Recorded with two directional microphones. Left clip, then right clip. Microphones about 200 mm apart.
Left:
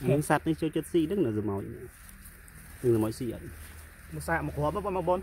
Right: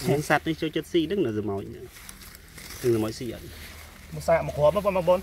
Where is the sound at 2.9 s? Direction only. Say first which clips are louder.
Right 1 dB; 25° left (ahead or behind).